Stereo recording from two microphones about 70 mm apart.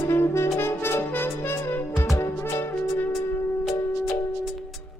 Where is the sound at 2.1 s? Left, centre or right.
Left.